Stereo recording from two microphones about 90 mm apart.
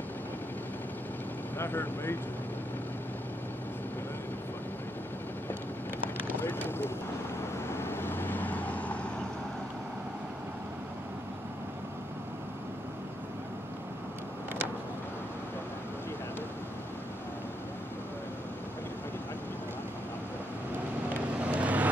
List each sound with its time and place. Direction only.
1.6 s speech: 25° left (ahead or behind)
6.2 s vehicle: 25° left (ahead or behind)
21.5 s vehicle: 15° right (ahead or behind)